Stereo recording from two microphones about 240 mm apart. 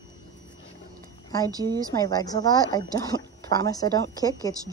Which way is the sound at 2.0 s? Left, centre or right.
Centre.